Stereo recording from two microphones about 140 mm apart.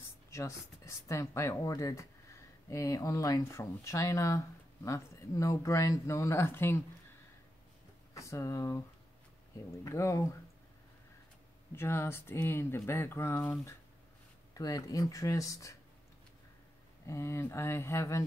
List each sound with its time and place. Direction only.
0.3 s speech: 20° left (ahead or behind)
8.1 s speech: 20° left (ahead or behind)
9.8 s speech: 20° left (ahead or behind)
11.7 s speech: 20° left (ahead or behind)
14.5 s speech: 25° left (ahead or behind)
17.0 s speech: 20° left (ahead or behind)